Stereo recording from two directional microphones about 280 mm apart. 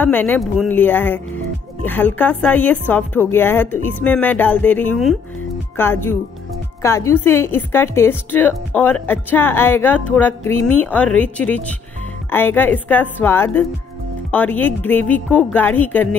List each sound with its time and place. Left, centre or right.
0.0 s a woman's voice: centre